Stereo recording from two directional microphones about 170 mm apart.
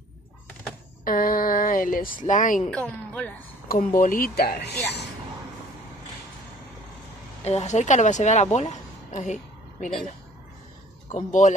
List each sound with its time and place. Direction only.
1.0 s speech: 55° left (ahead or behind)
2.7 s a woman's voice: 10° left (ahead or behind)
3.6 s speech: 60° left (ahead or behind)
7.4 s a woman's voice: 40° left (ahead or behind)
11.1 s speech: 45° left (ahead or behind)